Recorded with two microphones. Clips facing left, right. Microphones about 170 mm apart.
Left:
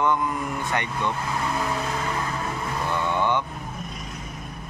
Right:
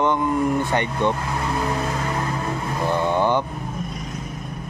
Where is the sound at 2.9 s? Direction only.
35° right (ahead or behind).